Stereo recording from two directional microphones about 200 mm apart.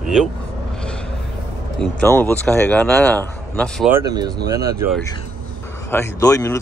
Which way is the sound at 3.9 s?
20° right (ahead or behind).